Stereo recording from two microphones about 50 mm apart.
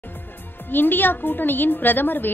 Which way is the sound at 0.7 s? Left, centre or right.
Left.